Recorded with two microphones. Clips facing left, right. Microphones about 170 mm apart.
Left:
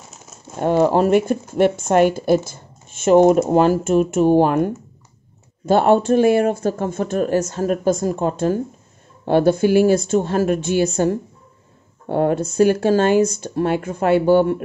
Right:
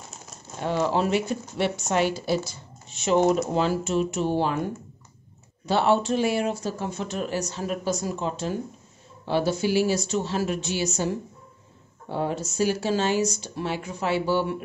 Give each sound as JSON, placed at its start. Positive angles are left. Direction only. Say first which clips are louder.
{"t": 0.6, "sound": "speech", "louder": "left 9 dB", "side_deg": 50}
{"t": 5.7, "sound": "speech", "louder": "left 7 dB", "side_deg": 50}